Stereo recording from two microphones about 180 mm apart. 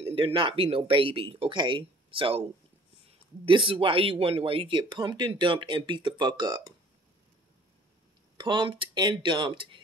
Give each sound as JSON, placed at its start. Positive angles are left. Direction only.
{"t": 0.0, "sound": "speech", "side_deg": -30}
{"t": 3.4, "sound": "speech", "side_deg": -30}
{"t": 8.4, "sound": "speech", "side_deg": -25}